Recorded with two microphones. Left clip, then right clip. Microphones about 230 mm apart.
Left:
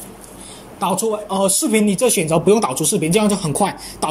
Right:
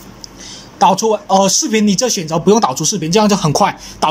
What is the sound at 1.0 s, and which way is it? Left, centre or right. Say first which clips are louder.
Speech: right 7 dB; right.